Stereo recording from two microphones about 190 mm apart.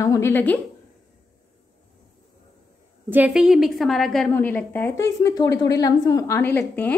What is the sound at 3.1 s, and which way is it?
A woman's voice, 5° right (ahead or behind).